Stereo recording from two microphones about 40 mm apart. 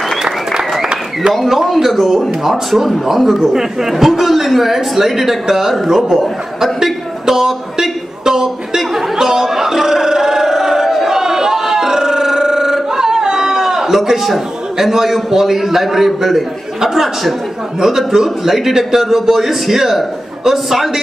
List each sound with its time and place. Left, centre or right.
0.2 s applause: centre
1.3 s a man's voice: centre
6.1 s chuckle: centre
14.3 s a man's voice: centre